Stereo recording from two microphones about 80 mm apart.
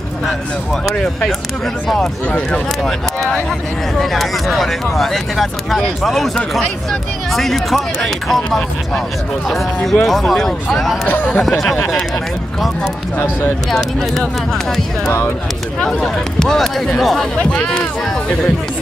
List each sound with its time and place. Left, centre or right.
0.8 s speech: centre
2.3 s speech: centre
10.0 s speech: centre
11.1 s speech: left
11.4 s speech: centre
13.7 s speech: centre
15.8 s speech: centre